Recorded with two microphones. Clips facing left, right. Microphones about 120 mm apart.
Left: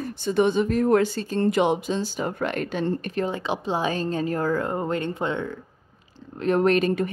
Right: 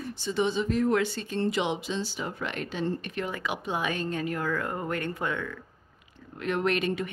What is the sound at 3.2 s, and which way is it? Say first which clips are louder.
A woman's voice: left 6 dB; 30° left (ahead or behind).